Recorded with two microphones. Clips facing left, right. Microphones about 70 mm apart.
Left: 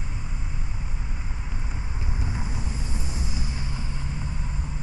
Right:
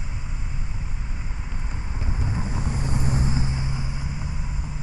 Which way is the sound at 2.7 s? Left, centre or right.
Right.